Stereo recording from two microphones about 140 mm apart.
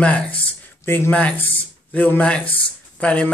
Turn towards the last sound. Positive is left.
turn(degrees=10)  # may be behind; listen again after turning